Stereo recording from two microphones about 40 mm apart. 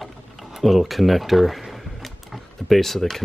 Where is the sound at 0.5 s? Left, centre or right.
Centre.